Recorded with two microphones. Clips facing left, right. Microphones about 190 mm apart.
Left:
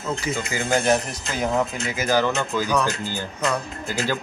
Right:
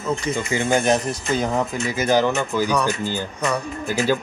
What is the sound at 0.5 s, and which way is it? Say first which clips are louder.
Speech: right 2 dB; 20° right (ahead or behind).